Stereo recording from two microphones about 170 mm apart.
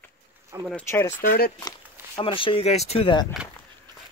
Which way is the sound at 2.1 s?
30° left (ahead or behind).